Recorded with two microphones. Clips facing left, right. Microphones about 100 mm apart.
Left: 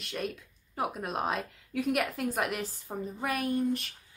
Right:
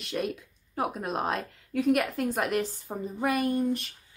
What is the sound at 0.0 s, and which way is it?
A woman's voice, centre (ahead or behind).